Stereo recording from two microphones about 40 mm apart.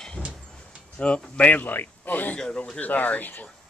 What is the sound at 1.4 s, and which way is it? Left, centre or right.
Speech, left.